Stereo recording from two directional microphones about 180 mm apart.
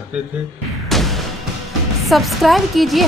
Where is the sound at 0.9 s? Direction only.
Centre (ahead or behind).